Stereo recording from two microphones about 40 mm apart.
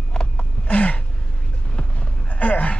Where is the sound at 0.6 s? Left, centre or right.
Left.